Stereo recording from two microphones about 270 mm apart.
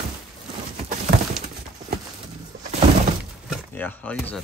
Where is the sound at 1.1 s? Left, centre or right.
Right.